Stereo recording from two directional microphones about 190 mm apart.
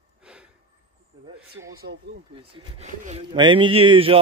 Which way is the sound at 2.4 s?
30° right (ahead or behind).